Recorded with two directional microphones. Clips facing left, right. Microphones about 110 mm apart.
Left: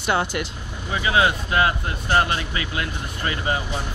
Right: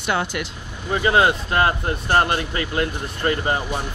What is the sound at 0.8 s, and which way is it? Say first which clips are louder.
Speech: right 3 dB; 40° right (ahead or behind).